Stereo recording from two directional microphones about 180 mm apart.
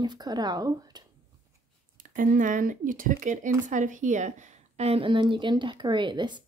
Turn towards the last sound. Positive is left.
turn(degrees=-25)  # may be behind; listen again after turning